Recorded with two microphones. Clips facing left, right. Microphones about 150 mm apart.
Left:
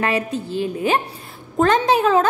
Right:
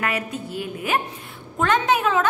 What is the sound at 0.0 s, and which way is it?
A woman's voice, 30° left (ahead or behind).